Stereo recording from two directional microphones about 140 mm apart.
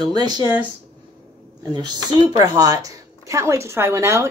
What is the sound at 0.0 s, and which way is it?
Speech, 30° right (ahead or behind).